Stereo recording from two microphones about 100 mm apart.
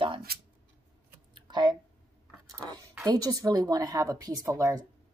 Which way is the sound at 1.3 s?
45° right (ahead or behind).